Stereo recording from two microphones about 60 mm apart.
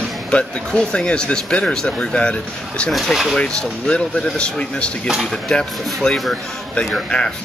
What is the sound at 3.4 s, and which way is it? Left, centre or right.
Speech, centre.